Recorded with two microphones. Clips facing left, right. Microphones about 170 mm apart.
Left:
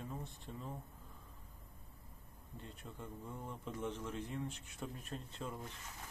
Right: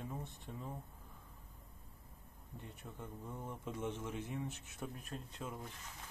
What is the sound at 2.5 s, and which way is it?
Speech, 15° right (ahead or behind).